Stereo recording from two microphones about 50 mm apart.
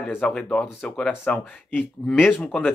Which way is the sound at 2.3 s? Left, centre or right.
Left.